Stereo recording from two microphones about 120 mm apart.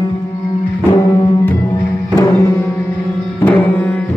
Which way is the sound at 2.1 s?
30° left (ahead or behind).